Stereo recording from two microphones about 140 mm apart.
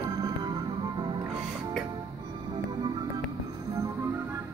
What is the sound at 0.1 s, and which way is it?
Music, 30° right (ahead or behind).